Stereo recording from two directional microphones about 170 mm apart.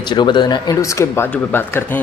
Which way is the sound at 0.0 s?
25° left (ahead or behind).